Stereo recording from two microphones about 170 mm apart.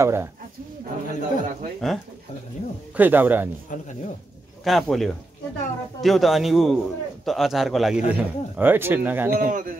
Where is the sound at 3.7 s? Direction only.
50° left (ahead or behind).